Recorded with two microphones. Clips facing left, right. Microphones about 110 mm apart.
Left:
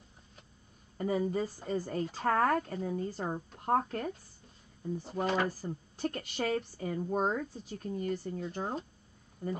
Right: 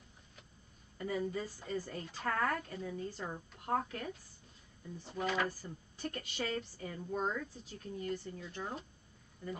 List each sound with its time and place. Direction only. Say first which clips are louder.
0.9 s speech: left 6 dB; 45° left (ahead or behind)